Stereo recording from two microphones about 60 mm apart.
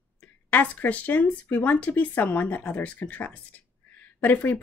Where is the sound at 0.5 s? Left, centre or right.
Left.